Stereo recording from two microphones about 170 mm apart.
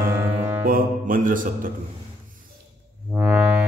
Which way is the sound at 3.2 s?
10° right (ahead or behind).